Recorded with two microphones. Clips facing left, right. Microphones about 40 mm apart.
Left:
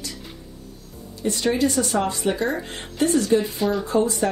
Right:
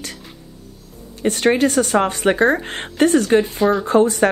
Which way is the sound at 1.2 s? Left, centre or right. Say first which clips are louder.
Right 5 dB; right.